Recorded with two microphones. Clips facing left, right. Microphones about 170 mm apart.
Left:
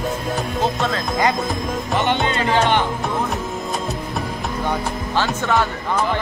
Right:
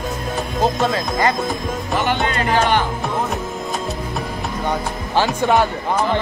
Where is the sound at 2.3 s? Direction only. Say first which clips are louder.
Even; 20° left (ahead or behind).